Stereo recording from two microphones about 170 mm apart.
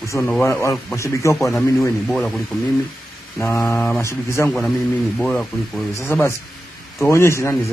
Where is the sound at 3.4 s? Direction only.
15° left (ahead or behind).